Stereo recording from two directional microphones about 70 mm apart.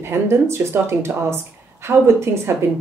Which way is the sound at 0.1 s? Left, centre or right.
Right.